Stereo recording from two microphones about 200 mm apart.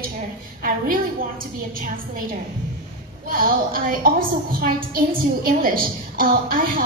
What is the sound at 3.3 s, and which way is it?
A woman's voice, 45° right (ahead or behind).